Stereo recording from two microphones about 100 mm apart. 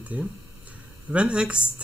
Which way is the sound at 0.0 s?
15° right (ahead or behind).